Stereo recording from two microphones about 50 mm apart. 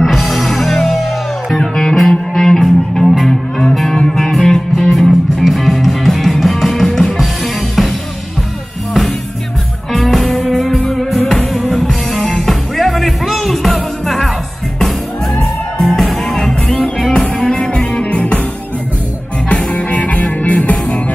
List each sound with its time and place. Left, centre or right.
0.0 s music: centre
9.9 s music: centre
15.8 s music: centre; by 18.4 s left
19.5 s music: left